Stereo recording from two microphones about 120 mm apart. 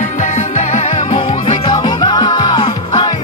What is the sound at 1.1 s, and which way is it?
Music, 45° left (ahead or behind).